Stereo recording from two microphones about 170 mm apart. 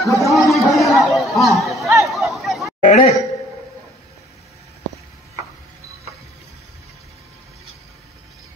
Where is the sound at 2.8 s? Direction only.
45° left (ahead or behind).